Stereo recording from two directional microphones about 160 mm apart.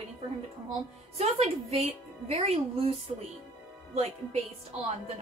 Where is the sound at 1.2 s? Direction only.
40° right (ahead or behind).